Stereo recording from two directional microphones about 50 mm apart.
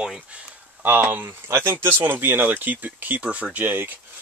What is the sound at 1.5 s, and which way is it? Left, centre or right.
Speech, right.